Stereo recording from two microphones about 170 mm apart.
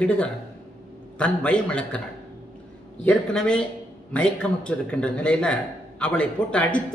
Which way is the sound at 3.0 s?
5° left (ahead or behind).